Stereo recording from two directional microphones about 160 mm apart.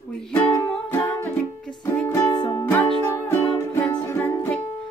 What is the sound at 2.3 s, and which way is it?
Music, 25° left (ahead or behind).